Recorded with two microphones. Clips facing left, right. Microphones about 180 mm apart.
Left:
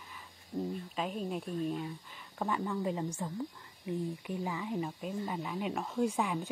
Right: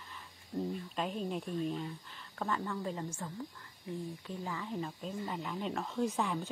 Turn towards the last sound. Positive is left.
turn(degrees=10)  # may be behind; listen again after turning